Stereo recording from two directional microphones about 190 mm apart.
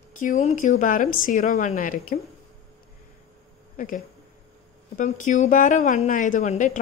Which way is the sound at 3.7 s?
45° left (ahead or behind).